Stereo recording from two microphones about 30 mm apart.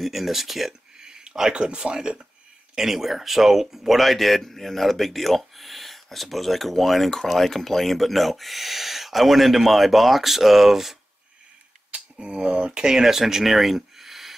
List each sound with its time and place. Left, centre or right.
0.0 s speech: centre
0.9 s a sound: right
1.5 s speech: right
2.8 s speech: centre
11.9 s a sound: right
12.7 s speech: right